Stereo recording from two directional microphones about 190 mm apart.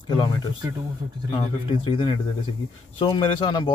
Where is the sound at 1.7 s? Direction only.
25° left (ahead or behind).